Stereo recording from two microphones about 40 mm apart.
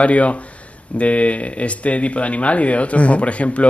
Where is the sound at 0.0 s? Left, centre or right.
Left.